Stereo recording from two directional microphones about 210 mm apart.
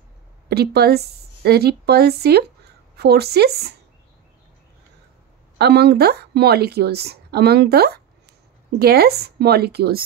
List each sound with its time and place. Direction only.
0.5 s a woman's voice: 50° right (ahead or behind)
5.6 s speech: 50° right (ahead or behind)